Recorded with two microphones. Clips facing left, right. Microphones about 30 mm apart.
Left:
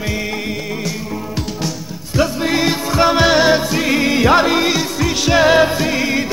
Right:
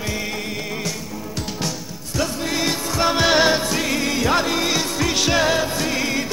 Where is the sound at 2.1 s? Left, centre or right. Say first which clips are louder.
Left 7 dB; left.